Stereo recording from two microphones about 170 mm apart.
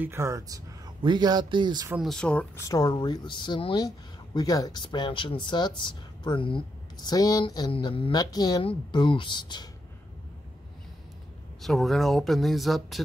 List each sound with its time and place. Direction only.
0.0 s speech: 15° right (ahead or behind)
2.0 s speech: 5° left (ahead or behind)
2.6 s speech: 20° left (ahead or behind)
11.6 s speech: centre (ahead or behind)